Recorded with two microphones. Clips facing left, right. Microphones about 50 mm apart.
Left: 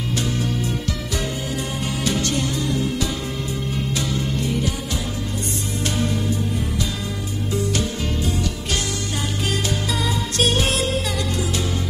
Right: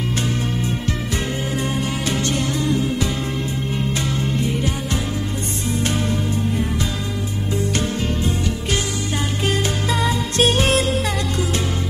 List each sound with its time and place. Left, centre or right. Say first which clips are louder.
2.0 s music: left 2 dB; right
9.5 s music: right 3 dB; right